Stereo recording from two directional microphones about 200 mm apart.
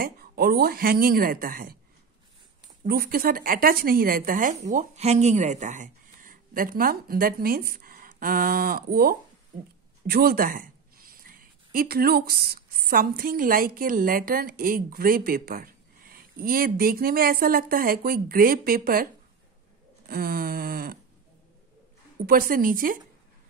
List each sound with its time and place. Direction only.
0.0 s a woman's voice: 50° right (ahead or behind)
2.8 s a woman's voice: 50° right (ahead or behind)
20.1 s a woman's voice: 50° right (ahead or behind)
22.2 s a woman's voice: 45° right (ahead or behind)